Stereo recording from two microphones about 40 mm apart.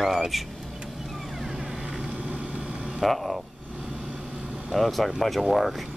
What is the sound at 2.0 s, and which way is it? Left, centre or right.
Vehicle, right.